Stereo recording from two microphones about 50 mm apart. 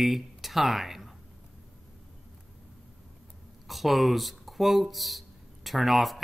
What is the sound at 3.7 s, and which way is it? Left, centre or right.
Speech, centre.